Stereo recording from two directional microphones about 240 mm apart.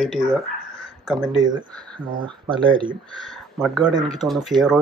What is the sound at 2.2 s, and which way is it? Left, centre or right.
Speech, centre.